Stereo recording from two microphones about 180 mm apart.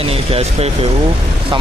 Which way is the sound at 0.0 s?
35° right (ahead or behind).